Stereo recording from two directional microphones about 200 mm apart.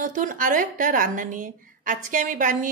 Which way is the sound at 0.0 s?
40° right (ahead or behind).